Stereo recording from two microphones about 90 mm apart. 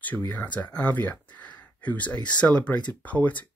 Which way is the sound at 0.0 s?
20° left (ahead or behind).